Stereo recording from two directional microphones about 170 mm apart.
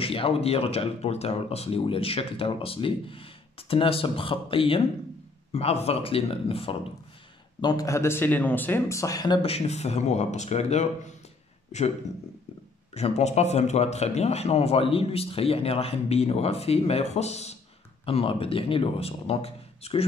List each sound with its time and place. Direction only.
0.0 s speech: 35° left (ahead or behind)
7.6 s speech: 20° left (ahead or behind); by 10.9 s 40° left (ahead or behind)
12.9 s speech: 40° left (ahead or behind)